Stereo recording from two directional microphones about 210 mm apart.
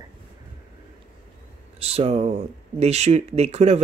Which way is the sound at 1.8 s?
30° right (ahead or behind).